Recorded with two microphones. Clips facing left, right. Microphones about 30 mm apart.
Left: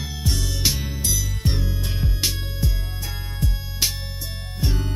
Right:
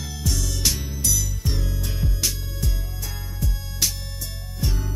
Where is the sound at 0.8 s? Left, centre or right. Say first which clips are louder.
Right 1 dB; left.